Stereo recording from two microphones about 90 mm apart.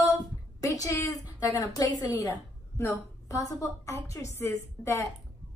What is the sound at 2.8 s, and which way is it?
A woman's voice, 30° left (ahead or behind).